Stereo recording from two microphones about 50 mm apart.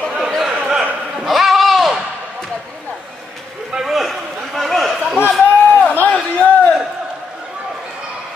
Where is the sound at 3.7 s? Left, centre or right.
Centre.